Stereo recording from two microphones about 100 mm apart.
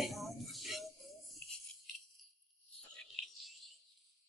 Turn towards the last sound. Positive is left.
turn(degrees=5)  # may be behind; listen again after turning